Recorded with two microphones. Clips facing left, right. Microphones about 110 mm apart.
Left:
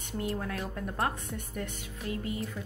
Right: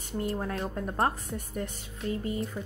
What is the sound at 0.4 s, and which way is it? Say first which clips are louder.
A woman's voice: right 3 dB; 30° right (ahead or behind).